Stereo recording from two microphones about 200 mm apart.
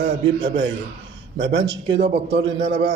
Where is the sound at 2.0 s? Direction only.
60° right (ahead or behind).